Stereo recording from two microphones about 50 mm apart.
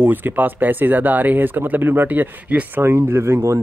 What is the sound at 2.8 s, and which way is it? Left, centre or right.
Speech, right.